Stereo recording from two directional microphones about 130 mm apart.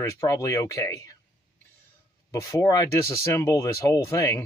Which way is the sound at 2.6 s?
25° left (ahead or behind).